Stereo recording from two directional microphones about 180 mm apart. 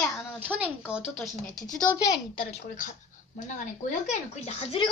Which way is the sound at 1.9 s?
20° left (ahead or behind).